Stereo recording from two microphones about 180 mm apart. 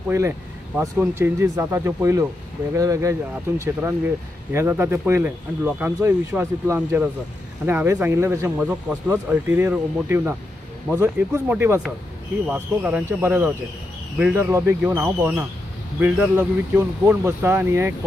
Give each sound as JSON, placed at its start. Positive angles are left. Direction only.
{"t": 0.1, "sound": "speech", "side_deg": -15}